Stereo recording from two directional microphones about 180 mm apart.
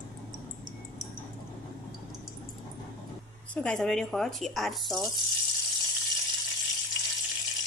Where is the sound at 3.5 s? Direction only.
5° left (ahead or behind).